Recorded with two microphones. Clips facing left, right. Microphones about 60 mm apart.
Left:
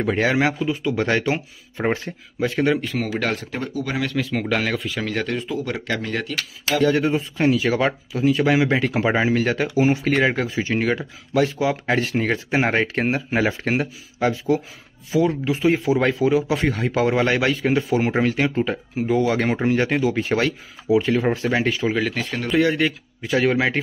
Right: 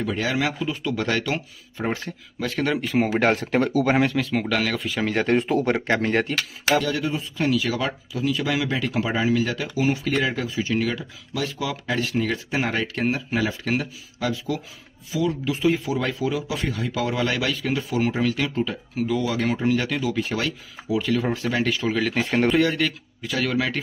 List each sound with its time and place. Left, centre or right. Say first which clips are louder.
0.0 s speech: left 5 dB; left
0.9 s speech: left 3 dB; left
2.4 s speech: left 5 dB; centre
2.7 s speech: left 2 dB; centre
3.0 s speech: right 4 dB; right
3.3 s speech: right 7 dB; right
4.2 s speech: left 1 dB; centre
4.7 s speech: left 1 dB; centre
5.4 s speech: right 4 dB; right
5.7 s speech: right 4 dB; right
6.8 s speech: left 7 dB; left
20.9 s speech: left 5 dB; left
22.5 s speech: left 2 dB; centre
23.2 s speech: left 5 dB; left